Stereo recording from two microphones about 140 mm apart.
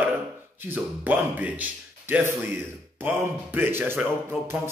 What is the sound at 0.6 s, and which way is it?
A man's voice, 15° right (ahead or behind).